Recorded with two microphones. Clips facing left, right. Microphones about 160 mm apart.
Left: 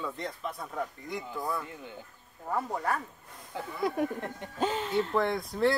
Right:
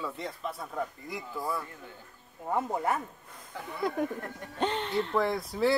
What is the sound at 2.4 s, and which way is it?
Speech, 20° right (ahead or behind).